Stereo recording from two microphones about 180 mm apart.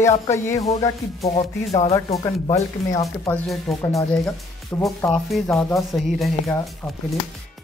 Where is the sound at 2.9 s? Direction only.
20° left (ahead or behind).